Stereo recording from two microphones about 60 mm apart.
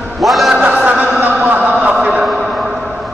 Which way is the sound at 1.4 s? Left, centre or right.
Right.